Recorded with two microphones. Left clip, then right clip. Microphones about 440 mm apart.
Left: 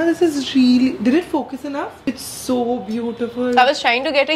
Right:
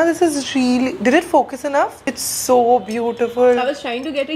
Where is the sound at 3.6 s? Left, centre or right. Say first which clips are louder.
Left 7 dB; left.